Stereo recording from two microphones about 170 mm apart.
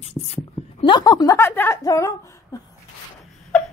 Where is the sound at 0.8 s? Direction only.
25° left (ahead or behind).